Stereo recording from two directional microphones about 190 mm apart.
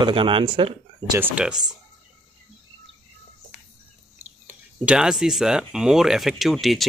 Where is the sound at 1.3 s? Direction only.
5° right (ahead or behind).